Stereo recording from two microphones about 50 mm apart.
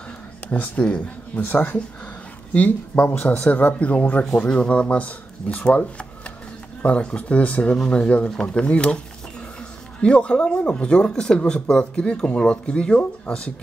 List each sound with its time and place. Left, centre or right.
0.5 s speech: left
10.0 s speech: left